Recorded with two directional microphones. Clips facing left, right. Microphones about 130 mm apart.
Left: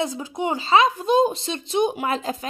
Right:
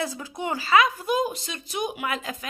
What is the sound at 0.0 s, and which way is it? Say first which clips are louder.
A woman's voice: left 5 dB; 20° left (ahead or behind).